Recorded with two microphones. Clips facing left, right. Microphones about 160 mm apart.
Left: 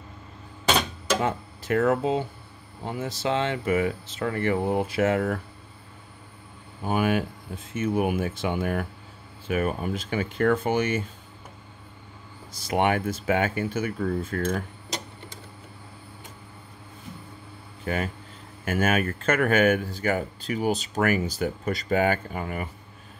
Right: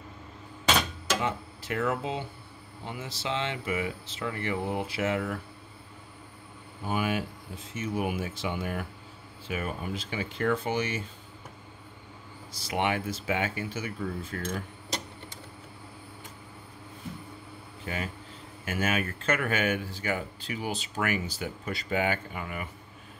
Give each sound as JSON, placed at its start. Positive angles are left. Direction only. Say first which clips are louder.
{"t": 1.2, "sound": "speech", "louder": "left 4 dB", "side_deg": 45}
{"t": 6.9, "sound": "speech", "louder": "left 5 dB", "side_deg": 55}
{"t": 12.6, "sound": "speech", "louder": "left 5 dB", "side_deg": 50}
{"t": 17.8, "sound": "speech", "louder": "left 7 dB", "side_deg": 55}